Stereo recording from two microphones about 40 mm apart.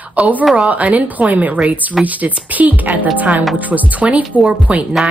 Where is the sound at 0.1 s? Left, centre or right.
Right.